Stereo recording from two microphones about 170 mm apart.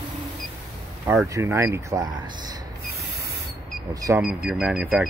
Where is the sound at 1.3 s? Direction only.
15° right (ahead or behind).